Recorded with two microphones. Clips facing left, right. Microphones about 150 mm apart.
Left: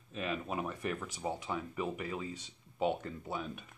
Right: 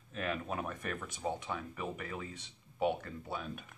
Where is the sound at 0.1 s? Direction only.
5° left (ahead or behind).